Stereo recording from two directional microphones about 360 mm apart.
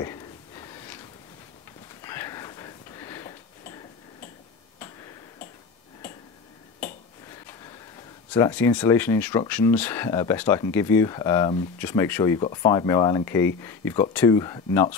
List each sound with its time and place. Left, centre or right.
0.0 s a sound: centre
4.7 s tick-tock: centre
7.2 s speech: centre